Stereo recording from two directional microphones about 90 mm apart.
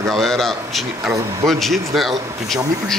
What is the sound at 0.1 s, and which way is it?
Speech, 5° left (ahead or behind).